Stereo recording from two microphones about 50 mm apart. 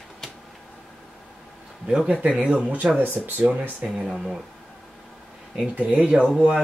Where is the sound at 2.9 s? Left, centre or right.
Right.